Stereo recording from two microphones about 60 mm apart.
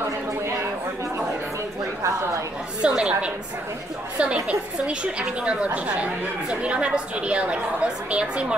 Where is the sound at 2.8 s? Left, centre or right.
Centre.